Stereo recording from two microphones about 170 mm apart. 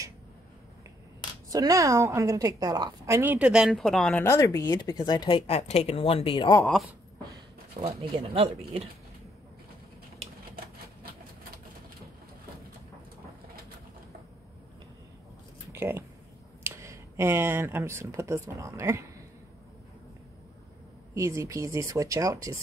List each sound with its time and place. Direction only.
1.5 s a woman's voice: 20° right (ahead or behind); by 6.6 s 30° left (ahead or behind)
6.6 s speech: centre (ahead or behind)
7.8 s speech: 30° right (ahead or behind)
15.7 s speech: 15° right (ahead or behind)
21.1 s speech: 15° right (ahead or behind)